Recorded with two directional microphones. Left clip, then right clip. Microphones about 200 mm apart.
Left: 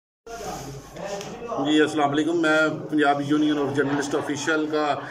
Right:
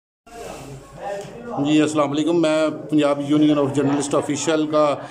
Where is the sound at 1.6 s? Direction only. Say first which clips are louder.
Right 2 dB; 15° right (ahead or behind).